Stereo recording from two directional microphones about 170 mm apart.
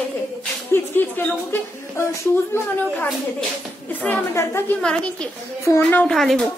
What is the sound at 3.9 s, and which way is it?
A woman's voice, 10° left (ahead or behind).